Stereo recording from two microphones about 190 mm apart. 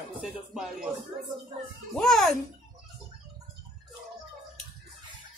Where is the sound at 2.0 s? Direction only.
Centre (ahead or behind).